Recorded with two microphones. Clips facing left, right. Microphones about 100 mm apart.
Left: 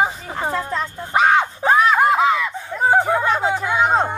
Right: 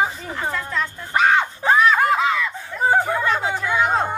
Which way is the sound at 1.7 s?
15° left (ahead or behind).